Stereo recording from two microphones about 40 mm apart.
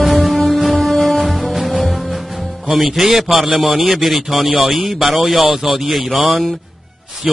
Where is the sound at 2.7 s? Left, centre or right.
Centre.